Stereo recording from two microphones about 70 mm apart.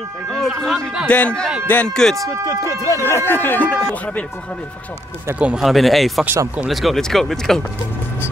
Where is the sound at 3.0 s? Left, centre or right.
Left.